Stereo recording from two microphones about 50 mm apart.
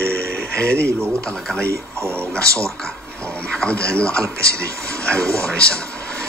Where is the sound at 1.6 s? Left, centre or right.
Right.